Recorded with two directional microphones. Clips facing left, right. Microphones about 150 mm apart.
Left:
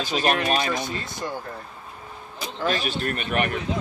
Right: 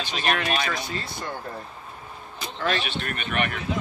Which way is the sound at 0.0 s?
40° left (ahead or behind).